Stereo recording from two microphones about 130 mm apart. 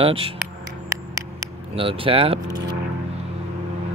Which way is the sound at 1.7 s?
45° right (ahead or behind).